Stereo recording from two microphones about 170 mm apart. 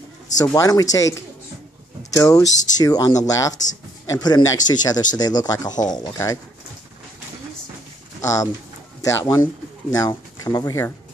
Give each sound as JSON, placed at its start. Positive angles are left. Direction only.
{"t": 0.4, "sound": "speech", "side_deg": 20}
{"t": 2.1, "sound": "speech", "side_deg": 15}
{"t": 8.2, "sound": "speech", "side_deg": 20}